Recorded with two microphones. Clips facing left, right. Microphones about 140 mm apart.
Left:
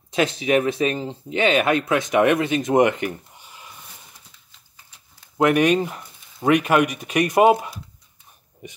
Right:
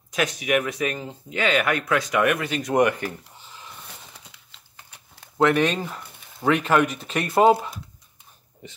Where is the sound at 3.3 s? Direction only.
10° left (ahead or behind).